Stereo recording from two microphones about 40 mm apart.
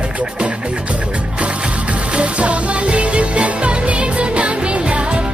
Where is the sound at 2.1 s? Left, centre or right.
Right.